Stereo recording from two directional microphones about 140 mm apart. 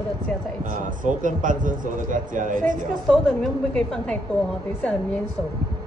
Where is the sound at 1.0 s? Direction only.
70° right (ahead or behind).